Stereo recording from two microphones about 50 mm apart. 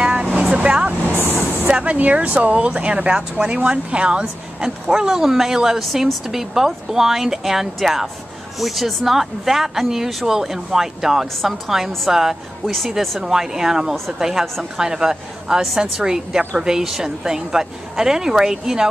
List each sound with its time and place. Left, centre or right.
0.0 s vehicle: centre
1.7 s speech: right
5.0 s speech: centre